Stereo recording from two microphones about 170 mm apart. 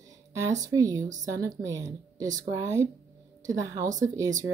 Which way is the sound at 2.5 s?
15° right (ahead or behind).